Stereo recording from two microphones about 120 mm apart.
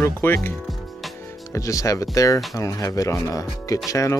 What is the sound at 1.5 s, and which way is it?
Speech, 25° left (ahead or behind).